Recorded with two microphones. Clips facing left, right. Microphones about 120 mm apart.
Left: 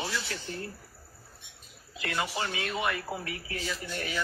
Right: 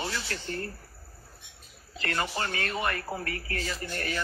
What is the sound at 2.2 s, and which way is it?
A man's voice, 10° left (ahead or behind).